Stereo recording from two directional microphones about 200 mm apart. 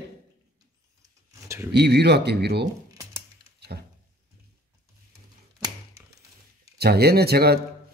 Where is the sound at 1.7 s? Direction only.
55° right (ahead or behind).